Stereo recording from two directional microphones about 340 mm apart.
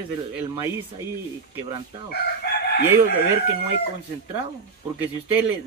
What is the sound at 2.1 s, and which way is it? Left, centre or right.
Chicken, left.